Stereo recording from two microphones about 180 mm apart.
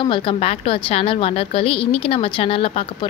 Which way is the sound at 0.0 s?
30° left (ahead or behind).